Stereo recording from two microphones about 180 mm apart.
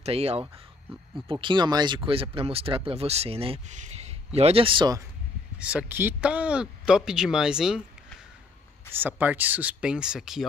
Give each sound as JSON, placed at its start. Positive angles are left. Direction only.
{"t": 0.0, "sound": "speech", "side_deg": -35}
{"t": 5.6, "sound": "speech", "side_deg": -5}
{"t": 8.9, "sound": "speech", "side_deg": -10}